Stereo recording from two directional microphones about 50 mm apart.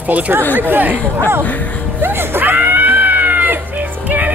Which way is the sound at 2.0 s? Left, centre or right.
Right.